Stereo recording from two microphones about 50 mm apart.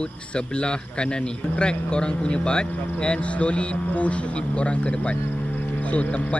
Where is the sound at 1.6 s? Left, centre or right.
Centre.